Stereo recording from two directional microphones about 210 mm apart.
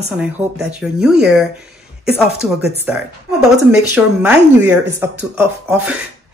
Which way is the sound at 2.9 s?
5° right (ahead or behind).